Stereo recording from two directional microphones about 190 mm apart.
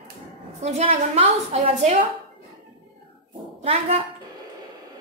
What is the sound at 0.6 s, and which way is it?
A woman's voice, 35° right (ahead or behind).